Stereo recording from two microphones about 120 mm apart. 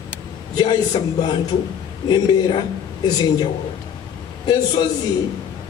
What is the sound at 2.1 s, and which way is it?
A man's voice, 40° left (ahead or behind).